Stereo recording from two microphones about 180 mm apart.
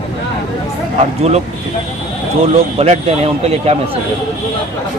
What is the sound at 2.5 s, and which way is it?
Speech, 35° right (ahead or behind).